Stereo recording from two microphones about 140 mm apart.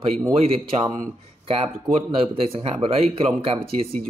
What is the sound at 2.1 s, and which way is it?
Speech, 40° right (ahead or behind).